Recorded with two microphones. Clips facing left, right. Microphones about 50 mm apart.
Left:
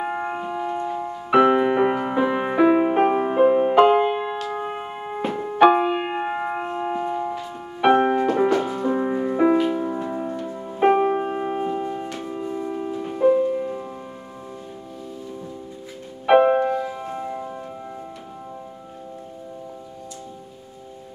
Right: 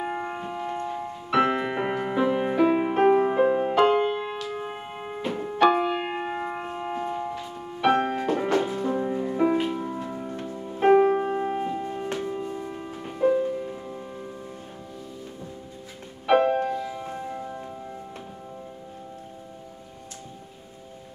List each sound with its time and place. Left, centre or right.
0.0 s piano: centre
4.6 s music: centre
5.3 s piano: centre
9.9 s music: left
12.2 s music: centre
16.3 s music: left
16.5 s music: left
16.8 s music: centre